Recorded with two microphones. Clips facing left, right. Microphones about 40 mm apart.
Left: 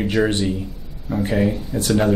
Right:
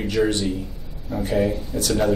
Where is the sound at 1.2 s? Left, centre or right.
Left.